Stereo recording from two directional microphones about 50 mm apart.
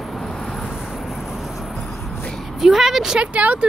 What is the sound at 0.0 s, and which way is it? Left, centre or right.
Vehicle, centre.